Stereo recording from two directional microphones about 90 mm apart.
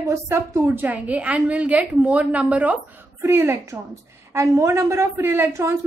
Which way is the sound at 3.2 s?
30° right (ahead or behind).